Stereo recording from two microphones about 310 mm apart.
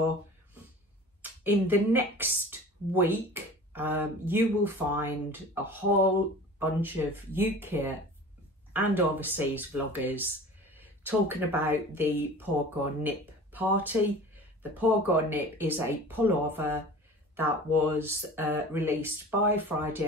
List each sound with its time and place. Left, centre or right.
1.4 s speech: centre